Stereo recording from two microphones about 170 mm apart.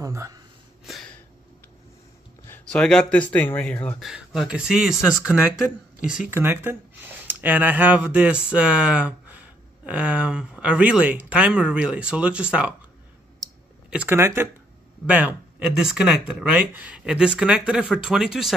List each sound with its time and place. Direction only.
0.0 s a sound: 20° right (ahead or behind)
2.4 s speech: 10° left (ahead or behind)
4.0 s speech: centre (ahead or behind)
13.8 s speech: 10° right (ahead or behind)